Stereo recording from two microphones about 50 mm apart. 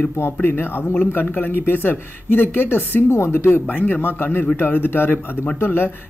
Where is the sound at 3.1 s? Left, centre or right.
Left.